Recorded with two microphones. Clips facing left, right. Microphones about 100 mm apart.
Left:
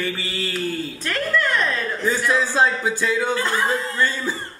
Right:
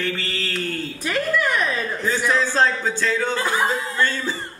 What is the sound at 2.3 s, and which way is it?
A woman's voice, 5° left (ahead or behind).